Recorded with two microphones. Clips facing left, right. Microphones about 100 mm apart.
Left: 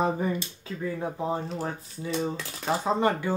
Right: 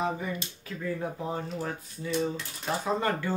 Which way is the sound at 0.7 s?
20° left (ahead or behind).